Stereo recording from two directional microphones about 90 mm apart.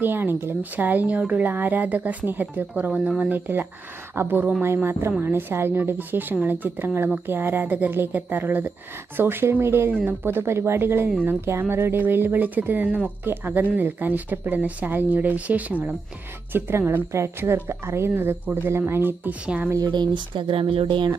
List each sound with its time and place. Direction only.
0.0 s speech: 25° right (ahead or behind)
19.4 s speech: 10° right (ahead or behind)
19.9 s speech: 60° right (ahead or behind)